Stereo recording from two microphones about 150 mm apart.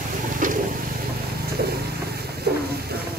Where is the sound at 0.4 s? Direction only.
65° right (ahead or behind).